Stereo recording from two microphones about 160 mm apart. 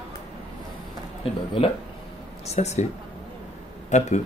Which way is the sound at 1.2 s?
35° left (ahead or behind).